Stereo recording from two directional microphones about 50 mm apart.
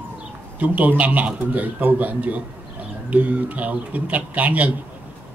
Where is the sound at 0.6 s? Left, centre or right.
Right.